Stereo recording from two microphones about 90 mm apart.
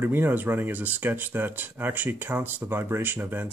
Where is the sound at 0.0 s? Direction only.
25° right (ahead or behind).